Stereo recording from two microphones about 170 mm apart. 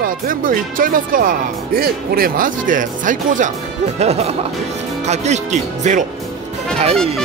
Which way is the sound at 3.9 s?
40° right (ahead or behind).